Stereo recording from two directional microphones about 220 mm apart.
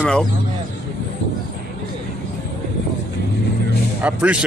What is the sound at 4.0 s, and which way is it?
Speech, 5° right (ahead or behind).